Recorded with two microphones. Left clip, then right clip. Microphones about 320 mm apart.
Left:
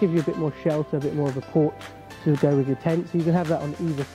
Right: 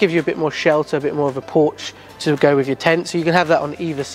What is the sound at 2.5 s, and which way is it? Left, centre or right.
Speech, centre.